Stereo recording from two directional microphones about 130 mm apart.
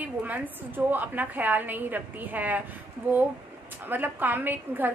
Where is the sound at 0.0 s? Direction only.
10° right (ahead or behind).